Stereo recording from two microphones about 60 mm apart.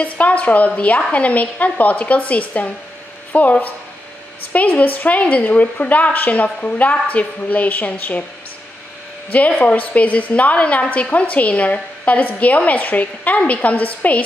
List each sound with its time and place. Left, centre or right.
0.0 s a woman's voice: left
9.6 s a woman's voice: left